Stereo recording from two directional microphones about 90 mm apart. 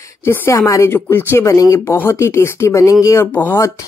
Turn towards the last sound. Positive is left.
turn(degrees=25)  # may be behind; listen again after turning